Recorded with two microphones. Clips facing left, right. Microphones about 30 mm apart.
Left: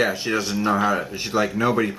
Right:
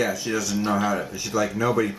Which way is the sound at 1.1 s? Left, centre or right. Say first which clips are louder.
Left 2 dB; left.